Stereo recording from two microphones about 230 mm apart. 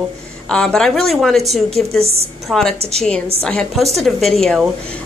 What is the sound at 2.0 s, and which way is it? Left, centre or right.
Speech, right.